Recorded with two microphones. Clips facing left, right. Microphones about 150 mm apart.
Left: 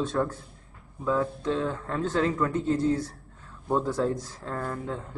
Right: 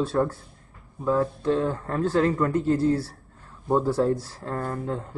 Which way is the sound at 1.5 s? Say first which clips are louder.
Right 4 dB; 45° right (ahead or behind).